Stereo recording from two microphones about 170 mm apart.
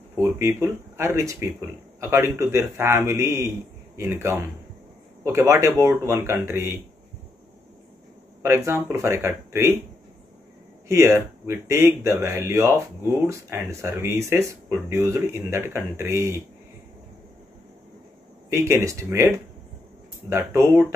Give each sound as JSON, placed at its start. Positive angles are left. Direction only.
{"t": 0.1, "sound": "speech", "side_deg": -20}
{"t": 8.4, "sound": "speech", "side_deg": -15}
{"t": 10.9, "sound": "speech", "side_deg": -15}
{"t": 18.5, "sound": "speech", "side_deg": -15}